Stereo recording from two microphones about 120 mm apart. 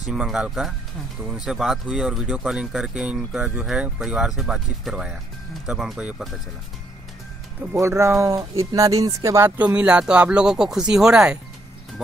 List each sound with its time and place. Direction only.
0.0 s speech: 5° right (ahead or behind)
7.7 s speech: 25° right (ahead or behind)
9.6 s speech: 10° right (ahead or behind)